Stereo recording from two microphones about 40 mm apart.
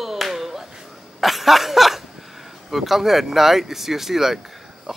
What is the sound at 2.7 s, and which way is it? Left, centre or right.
Speech, centre.